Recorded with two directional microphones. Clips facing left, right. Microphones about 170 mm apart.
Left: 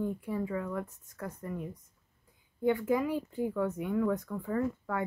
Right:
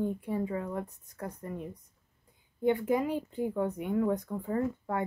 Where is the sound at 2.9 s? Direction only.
20° right (ahead or behind).